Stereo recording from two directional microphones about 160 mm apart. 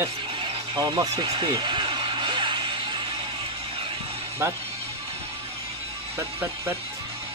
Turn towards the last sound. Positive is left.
turn(degrees=-20)  # may be behind; listen again after turning